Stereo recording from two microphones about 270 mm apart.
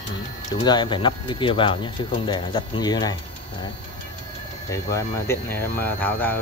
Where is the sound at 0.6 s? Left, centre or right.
Centre.